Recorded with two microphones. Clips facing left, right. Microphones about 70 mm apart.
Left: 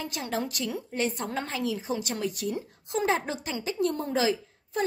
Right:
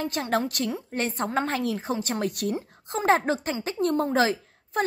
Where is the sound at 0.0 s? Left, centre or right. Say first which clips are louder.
Right 5 dB; right.